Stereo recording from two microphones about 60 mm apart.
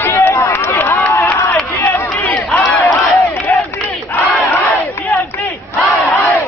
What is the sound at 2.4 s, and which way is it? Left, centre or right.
Speech, centre.